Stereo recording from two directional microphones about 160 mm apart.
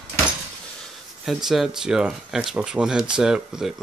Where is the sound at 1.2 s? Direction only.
Centre (ahead or behind).